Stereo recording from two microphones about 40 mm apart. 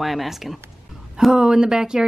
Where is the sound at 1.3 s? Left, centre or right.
Centre.